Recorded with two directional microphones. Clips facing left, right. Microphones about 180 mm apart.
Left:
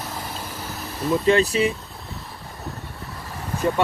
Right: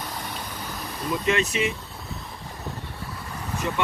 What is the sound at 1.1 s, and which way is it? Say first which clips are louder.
Speech: left 6 dB; 35° left (ahead or behind).